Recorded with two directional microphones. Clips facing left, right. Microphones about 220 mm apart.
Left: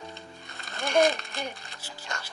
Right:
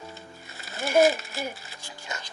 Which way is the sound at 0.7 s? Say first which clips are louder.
Right 3 dB; 5° right (ahead or behind).